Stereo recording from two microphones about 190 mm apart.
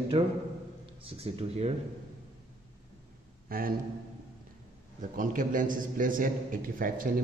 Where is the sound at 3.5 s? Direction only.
50° right (ahead or behind).